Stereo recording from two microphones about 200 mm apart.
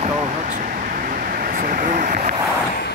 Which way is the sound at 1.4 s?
40° right (ahead or behind).